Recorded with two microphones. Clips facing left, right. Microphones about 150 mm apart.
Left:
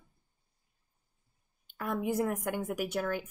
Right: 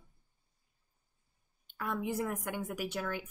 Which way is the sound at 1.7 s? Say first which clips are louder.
Left 4 dB; 50° left (ahead or behind).